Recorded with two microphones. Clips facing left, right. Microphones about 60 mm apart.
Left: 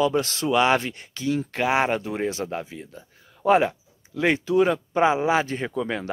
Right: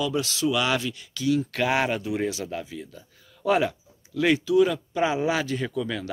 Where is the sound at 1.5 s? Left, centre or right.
Left.